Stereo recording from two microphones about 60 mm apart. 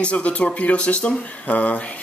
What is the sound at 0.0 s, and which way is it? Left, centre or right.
Speech, left.